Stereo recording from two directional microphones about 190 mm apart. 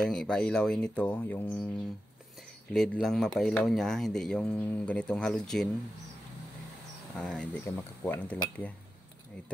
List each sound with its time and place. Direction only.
0.0 s speech: 5° left (ahead or behind)
2.7 s speech: centre (ahead or behind)
7.2 s speech: 5° left (ahead or behind)